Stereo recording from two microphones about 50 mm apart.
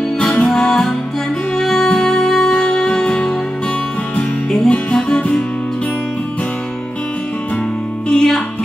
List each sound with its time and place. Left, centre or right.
0.2 s music: centre
2.6 s music: left
8.1 s music: centre